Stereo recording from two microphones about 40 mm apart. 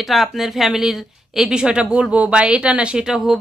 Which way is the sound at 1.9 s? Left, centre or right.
Right.